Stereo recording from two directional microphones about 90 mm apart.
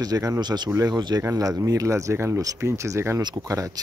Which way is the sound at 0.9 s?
50° right (ahead or behind).